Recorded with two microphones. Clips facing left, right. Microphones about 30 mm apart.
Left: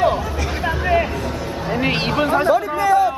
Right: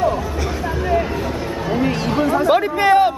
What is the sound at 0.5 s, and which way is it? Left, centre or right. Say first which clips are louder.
Hubbub: left 1 dB; left.